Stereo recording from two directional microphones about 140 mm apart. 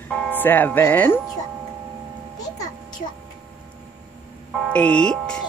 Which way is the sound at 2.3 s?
25° left (ahead or behind).